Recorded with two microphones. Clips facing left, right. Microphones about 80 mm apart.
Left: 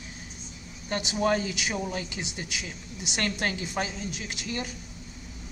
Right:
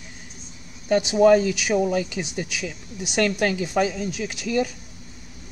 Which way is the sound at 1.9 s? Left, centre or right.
Right.